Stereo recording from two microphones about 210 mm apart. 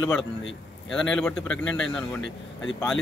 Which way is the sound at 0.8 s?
5° left (ahead or behind).